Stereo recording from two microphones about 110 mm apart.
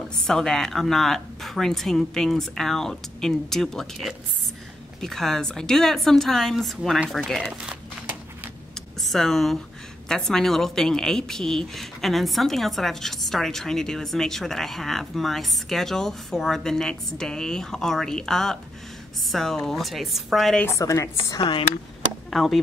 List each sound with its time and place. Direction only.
0.3 s a woman's voice: 5° left (ahead or behind)
7.4 s a sound: 10° right (ahead or behind)
9.0 s a woman's voice: 5° left (ahead or behind)
20.6 s speech: 30° left (ahead or behind)
21.4 s speech: 50° left (ahead or behind)
22.3 s speech: centre (ahead or behind)